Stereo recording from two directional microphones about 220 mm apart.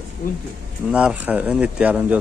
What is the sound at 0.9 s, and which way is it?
Speech, 5° right (ahead or behind).